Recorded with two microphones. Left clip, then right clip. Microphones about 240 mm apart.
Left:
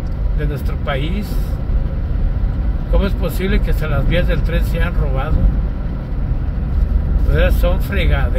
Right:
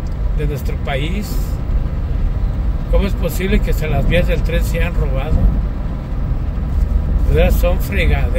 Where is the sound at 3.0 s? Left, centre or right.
Centre.